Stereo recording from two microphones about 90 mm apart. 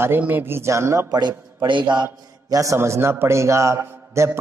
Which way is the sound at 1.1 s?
55° right (ahead or behind).